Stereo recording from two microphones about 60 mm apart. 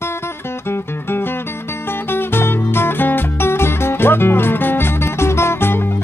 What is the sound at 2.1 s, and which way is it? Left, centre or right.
Music, left.